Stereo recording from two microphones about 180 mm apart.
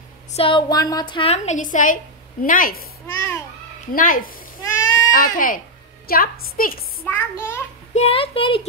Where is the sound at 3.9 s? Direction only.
50° left (ahead or behind).